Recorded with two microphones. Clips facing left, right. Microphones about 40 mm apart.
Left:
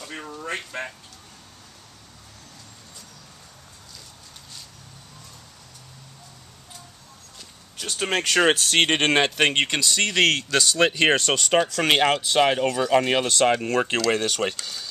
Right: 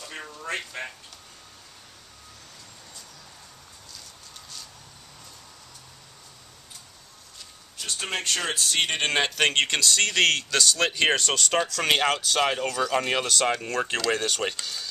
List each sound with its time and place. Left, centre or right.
0.7 s speech: centre
8.2 s speech: left
8.7 s speech: left
9.1 s speech: left